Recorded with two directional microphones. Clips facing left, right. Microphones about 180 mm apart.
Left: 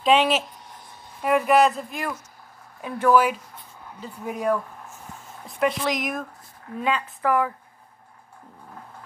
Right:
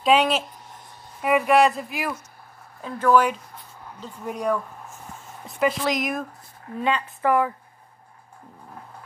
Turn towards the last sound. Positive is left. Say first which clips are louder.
# right 1 dB
turn(degrees=-5)  # may be behind; listen again after turning